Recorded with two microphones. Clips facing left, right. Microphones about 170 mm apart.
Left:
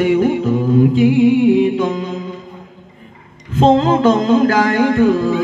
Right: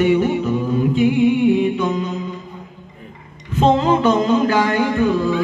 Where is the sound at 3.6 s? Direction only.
90° left.